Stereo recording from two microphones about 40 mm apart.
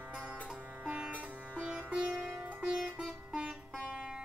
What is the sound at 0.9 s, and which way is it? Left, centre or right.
Music, right.